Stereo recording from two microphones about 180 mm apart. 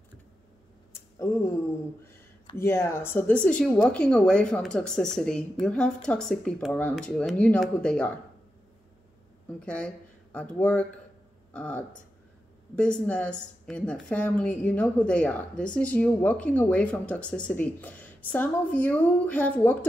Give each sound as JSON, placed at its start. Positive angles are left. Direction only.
{"t": 0.9, "sound": "a sound", "side_deg": 15}
{"t": 2.5, "sound": "a woman's voice", "side_deg": 15}
{"t": 9.5, "sound": "a woman's voice", "side_deg": 5}